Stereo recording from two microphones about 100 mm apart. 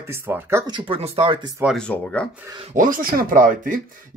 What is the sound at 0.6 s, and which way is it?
Speech, 50° right (ahead or behind).